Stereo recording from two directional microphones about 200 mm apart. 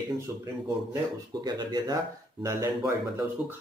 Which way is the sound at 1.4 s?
20° right (ahead or behind).